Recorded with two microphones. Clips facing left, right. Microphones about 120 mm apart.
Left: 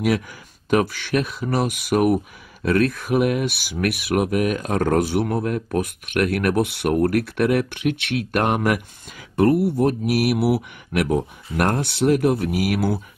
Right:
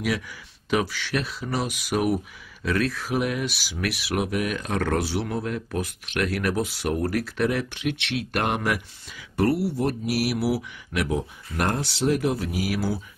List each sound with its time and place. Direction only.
0.7 s speech: 50° left (ahead or behind)